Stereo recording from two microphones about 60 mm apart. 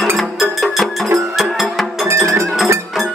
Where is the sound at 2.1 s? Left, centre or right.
Right.